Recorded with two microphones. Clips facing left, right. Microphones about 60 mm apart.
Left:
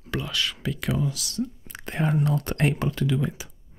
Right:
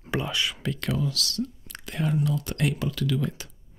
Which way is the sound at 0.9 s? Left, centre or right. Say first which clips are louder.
Left 1 dB; centre.